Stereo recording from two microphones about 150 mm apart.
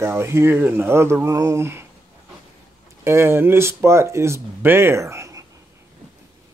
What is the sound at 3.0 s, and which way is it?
Speech, 15° right (ahead or behind).